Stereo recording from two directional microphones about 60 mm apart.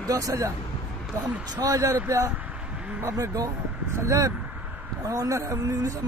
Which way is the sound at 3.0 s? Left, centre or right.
Right.